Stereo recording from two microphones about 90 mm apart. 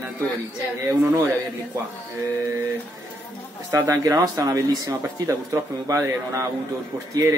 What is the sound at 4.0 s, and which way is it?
Speech, 35° right (ahead or behind).